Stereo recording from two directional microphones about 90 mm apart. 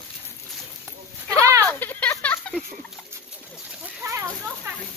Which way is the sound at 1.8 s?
20° left (ahead or behind).